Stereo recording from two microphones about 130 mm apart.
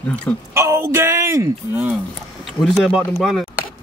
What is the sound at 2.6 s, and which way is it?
Speech, centre (ahead or behind).